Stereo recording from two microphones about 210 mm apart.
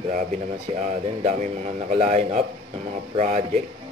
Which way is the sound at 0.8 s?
35° right (ahead or behind).